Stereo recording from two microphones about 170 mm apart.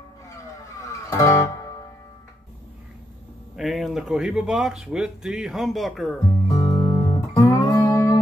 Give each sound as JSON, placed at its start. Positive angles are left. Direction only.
{"t": 1.1, "sound": "music", "side_deg": 15}
{"t": 3.5, "sound": "speech", "side_deg": 0}
{"t": 6.7, "sound": "music", "side_deg": 20}